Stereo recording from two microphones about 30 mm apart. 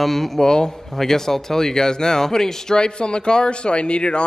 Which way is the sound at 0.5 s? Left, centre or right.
Left.